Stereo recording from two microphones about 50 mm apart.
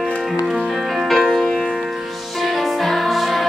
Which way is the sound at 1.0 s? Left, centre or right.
Centre.